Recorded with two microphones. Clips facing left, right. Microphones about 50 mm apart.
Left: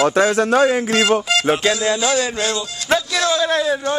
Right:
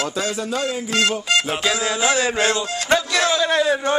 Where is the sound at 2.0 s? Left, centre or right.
Right.